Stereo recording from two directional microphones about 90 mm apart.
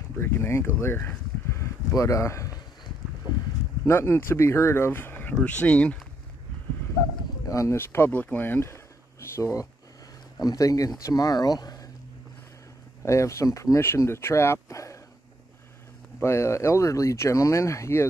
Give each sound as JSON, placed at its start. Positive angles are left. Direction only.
{"t": 0.2, "sound": "speech", "side_deg": 25}
{"t": 0.7, "sound": "a sound", "side_deg": 25}
{"t": 2.0, "sound": "speech", "side_deg": 35}
{"t": 3.8, "sound": "speech", "side_deg": 30}
{"t": 7.4, "sound": "speech", "side_deg": 35}
{"t": 7.8, "sound": "speech", "side_deg": 25}
{"t": 13.0, "sound": "speech", "side_deg": 35}
{"t": 16.2, "sound": "speech", "side_deg": 30}